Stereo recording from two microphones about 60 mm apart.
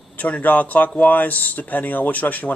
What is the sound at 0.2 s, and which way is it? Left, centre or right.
Speech, left.